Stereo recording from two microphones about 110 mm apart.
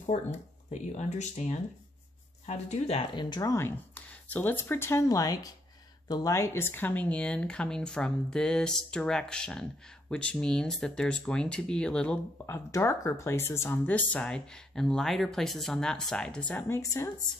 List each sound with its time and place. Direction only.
0.0 s speech: 85° left
3.2 s speech: 35° left (ahead or behind); by 12.2 s 10° left (ahead or behind)
12.4 s speech: 25° left (ahead or behind)